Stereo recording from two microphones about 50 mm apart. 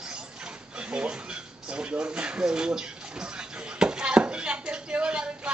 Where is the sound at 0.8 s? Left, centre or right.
Right.